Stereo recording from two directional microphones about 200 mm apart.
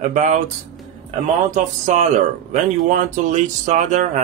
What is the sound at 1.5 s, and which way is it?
Speech, 35° right (ahead or behind).